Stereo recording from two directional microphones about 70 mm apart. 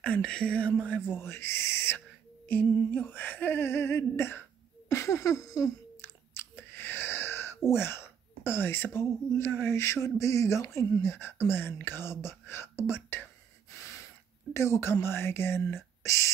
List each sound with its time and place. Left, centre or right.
0.0 s a sound: centre
1.0 s humming: left
2.4 s humming: left
5.9 s chewing: left
7.7 s humming: left
10.0 s speech: left
11.0 s humming: left
13.7 s a sound: left